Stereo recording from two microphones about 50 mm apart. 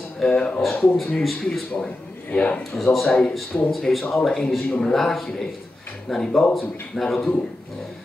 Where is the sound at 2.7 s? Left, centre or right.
Centre.